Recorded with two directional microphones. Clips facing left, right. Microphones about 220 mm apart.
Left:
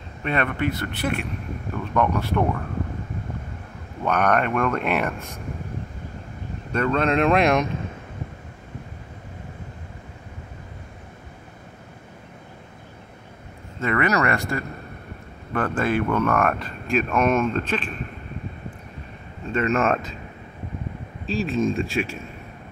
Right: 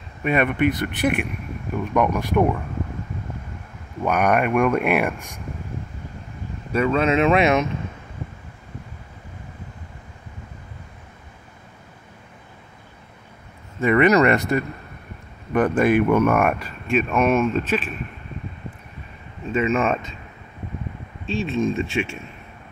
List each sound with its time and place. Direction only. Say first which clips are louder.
0.2 s speech: right 5 dB; 15° right (ahead or behind)
4.0 s speech: right 2 dB; 10° right (ahead or behind)
6.7 s speech: right 2 dB; 5° right (ahead or behind)
13.7 s speech: right 6 dB; 15° right (ahead or behind)
19.4 s speech: right 1 dB; centre (ahead or behind)
21.3 s speech: even; centre (ahead or behind)